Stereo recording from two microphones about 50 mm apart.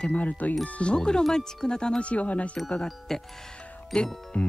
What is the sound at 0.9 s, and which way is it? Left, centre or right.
Speech, centre.